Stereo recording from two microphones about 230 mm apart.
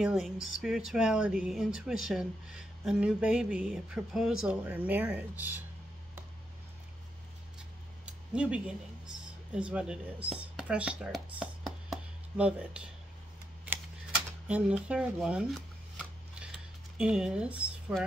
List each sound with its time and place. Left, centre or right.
0.0 s speech: centre
8.0 s speech: centre
14.5 s shuffling cards: centre